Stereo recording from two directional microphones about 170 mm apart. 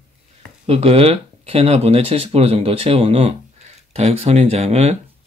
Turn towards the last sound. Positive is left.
turn(degrees=-40)  # may be behind; listen again after turning